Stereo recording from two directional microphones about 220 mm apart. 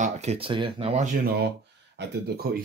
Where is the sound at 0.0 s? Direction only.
30° right (ahead or behind).